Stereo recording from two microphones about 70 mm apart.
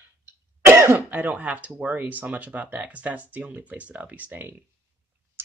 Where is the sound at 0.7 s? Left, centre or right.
Right.